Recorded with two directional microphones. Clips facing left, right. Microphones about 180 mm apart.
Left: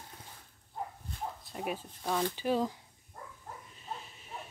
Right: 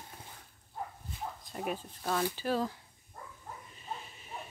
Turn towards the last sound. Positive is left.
turn(degrees=0)  # may be behind; listen again after turning